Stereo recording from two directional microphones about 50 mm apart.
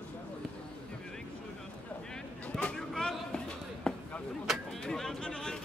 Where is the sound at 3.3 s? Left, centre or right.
Centre.